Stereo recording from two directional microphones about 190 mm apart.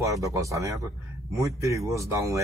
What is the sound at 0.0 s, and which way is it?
Speech, 15° right (ahead or behind).